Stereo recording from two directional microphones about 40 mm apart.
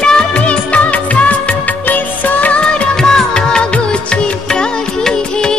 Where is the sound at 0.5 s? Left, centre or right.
Left.